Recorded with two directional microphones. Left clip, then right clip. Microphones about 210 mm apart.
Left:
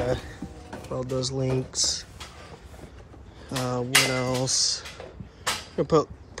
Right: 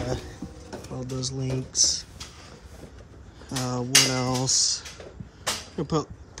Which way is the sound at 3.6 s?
20° right (ahead or behind).